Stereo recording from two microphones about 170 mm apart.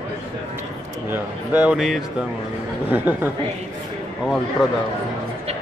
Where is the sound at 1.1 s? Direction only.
10° right (ahead or behind).